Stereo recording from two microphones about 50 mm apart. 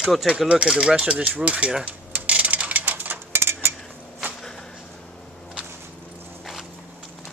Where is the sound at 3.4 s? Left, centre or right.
Right.